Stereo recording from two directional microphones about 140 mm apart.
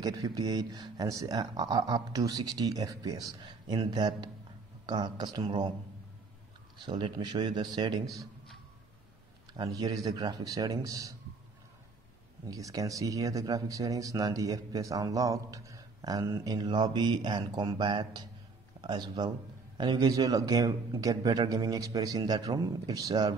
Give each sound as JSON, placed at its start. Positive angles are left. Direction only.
{"t": 0.0, "sound": "speech", "side_deg": -25}
{"t": 6.8, "sound": "speech", "side_deg": -30}
{"t": 9.5, "sound": "speech", "side_deg": -30}
{"t": 12.4, "sound": "speech", "side_deg": -25}